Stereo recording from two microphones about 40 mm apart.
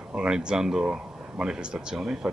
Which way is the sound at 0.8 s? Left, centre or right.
Right.